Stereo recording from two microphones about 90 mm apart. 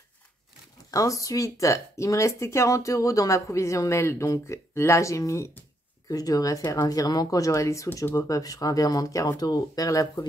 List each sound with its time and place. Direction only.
0.9 s speech: 40° left (ahead or behind)